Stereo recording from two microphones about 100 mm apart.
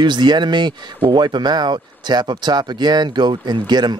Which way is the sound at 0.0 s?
50° right (ahead or behind).